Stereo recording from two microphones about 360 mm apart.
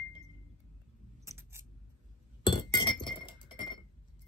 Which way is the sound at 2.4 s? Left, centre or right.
Centre.